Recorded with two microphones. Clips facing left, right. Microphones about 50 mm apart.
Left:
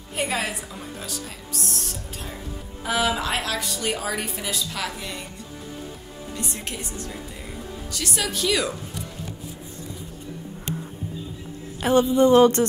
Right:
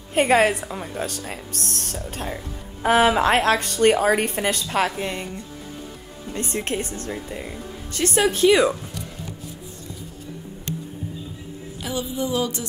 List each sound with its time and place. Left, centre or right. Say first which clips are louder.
0.1 s a woman's voice: right 9 dB; right
6.3 s a woman's voice: right 7 dB; right
11.8 s a sound: left 10 dB; left